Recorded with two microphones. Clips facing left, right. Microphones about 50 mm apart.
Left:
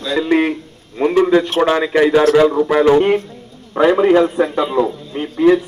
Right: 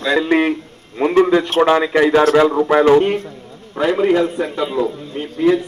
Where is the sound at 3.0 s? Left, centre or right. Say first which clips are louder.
Left 2 dB; left.